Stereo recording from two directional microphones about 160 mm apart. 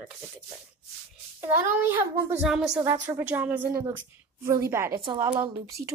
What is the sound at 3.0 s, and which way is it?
A child's voice, 15° right (ahead or behind).